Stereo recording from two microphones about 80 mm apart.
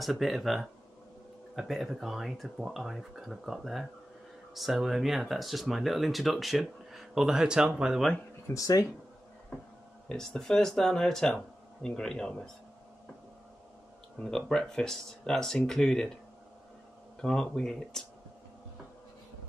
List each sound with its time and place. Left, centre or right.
0.0 s speech: centre
8.5 s speech: left
10.0 s speech: centre
14.2 s speech: centre
17.2 s speech: centre